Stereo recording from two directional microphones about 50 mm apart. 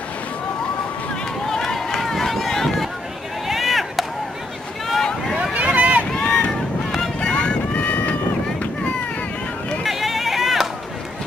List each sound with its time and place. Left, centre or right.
1.5 s run: centre
3.4 s chop: centre
5.4 s vehicle: right
6.1 s boat: centre
9.8 s a sound: centre